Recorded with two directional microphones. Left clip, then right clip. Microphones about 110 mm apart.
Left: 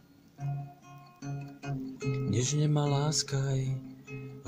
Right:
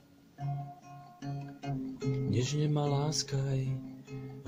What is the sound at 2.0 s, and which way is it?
Speech, 35° left (ahead or behind).